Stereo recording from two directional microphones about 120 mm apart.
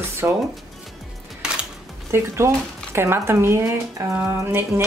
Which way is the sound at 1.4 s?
5° right (ahead or behind).